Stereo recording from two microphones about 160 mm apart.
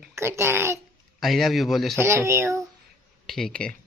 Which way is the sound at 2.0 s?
15° right (ahead or behind).